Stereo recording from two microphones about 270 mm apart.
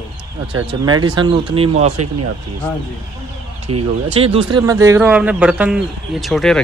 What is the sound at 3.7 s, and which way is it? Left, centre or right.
Speech, right.